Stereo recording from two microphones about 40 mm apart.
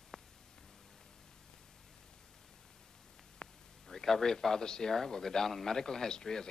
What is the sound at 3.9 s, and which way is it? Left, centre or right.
A man's voice, centre.